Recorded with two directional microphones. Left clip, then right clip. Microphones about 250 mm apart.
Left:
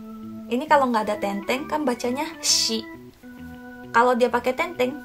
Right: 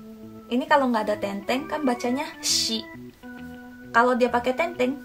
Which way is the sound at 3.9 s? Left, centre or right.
Centre.